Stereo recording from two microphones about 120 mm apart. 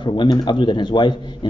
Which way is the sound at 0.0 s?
40° left (ahead or behind).